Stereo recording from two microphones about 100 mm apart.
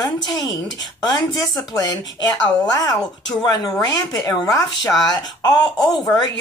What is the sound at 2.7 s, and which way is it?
Speech, 40° left (ahead or behind).